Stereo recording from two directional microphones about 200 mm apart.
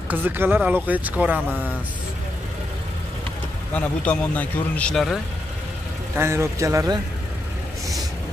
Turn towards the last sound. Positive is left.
turn(degrees=-15)  # may be behind; listen again after turning